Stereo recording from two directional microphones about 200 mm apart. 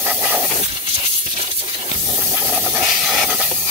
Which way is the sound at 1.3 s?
30° right (ahead or behind).